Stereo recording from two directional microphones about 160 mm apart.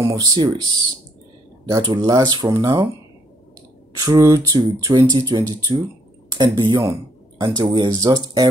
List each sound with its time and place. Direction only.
0.0 s speech: 25° right (ahead or behind)
1.7 s speech: 25° right (ahead or behind)
4.0 s speech: 20° right (ahead or behind)